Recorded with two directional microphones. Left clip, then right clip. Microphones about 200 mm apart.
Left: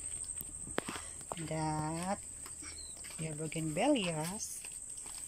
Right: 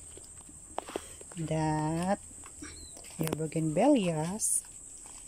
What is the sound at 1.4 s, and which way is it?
Speech, 20° right (ahead or behind).